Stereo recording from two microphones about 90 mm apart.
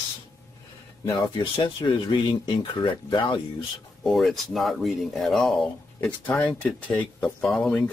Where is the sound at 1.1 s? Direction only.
60° left (ahead or behind).